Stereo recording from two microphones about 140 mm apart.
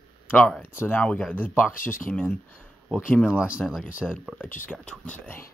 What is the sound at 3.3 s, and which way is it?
Speech, 10° right (ahead or behind).